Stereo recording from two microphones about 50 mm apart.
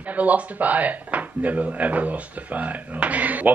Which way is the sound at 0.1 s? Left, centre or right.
Right.